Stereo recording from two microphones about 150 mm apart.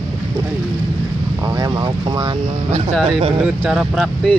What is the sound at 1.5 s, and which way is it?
Speech, 25° right (ahead or behind).